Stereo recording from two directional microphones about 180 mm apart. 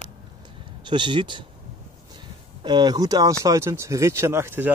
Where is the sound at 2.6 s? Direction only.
25° right (ahead or behind).